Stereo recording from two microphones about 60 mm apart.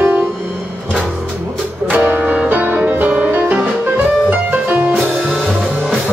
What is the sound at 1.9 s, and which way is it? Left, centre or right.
Music, right.